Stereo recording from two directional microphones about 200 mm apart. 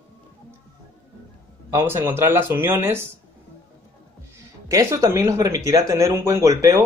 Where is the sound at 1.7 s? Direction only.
15° right (ahead or behind).